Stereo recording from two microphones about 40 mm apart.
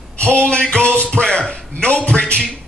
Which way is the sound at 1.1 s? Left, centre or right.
Left.